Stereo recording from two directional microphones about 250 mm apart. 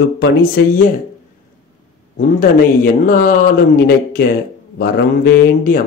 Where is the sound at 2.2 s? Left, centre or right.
Left.